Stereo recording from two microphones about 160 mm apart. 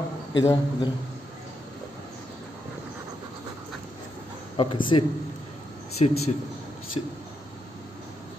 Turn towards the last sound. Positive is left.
turn(degrees=30)  # may be behind; listen again after turning